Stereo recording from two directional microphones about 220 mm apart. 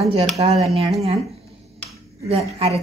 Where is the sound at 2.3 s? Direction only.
25° right (ahead or behind).